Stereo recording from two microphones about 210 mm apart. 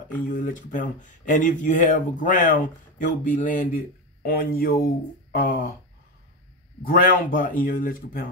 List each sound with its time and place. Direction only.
0.3 s speech: 40° left (ahead or behind)
6.8 s speech: 45° left (ahead or behind)